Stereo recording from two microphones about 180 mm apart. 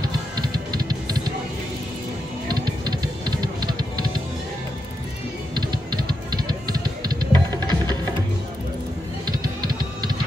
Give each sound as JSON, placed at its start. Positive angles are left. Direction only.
{"t": 0.0, "sound": "music", "side_deg": -25}
{"t": 2.4, "sound": "music", "side_deg": -25}
{"t": 5.5, "sound": "music", "side_deg": -25}
{"t": 9.2, "sound": "music", "side_deg": -25}